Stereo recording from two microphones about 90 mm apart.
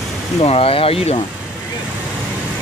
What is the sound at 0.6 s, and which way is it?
Speech, 90° left.